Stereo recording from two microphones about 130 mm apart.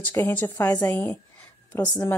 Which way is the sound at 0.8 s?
20° left (ahead or behind).